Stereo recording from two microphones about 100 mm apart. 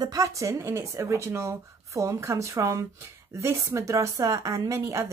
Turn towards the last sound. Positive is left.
turn(degrees=-30)  # may be behind; listen again after turning